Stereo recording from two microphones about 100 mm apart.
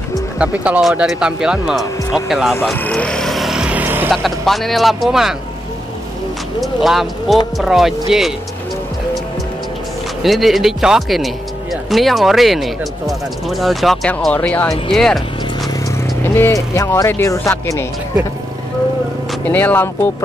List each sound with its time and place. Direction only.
0.4 s speech: 10° right (ahead or behind)
2.7 s vehicle: 15° left (ahead or behind); by 4.1 s 20° right (ahead or behind)
4.1 s speech: centre (ahead or behind)
6.6 s speech: centre (ahead or behind)
10.2 s speech: centre (ahead or behind)
14.3 s speech: 15° left (ahead or behind)
14.7 s speech: 5° left (ahead or behind)
16.0 s vehicle: 20° left (ahead or behind)
16.7 s speech: 30° left (ahead or behind)
19.5 s speech: 20° left (ahead or behind)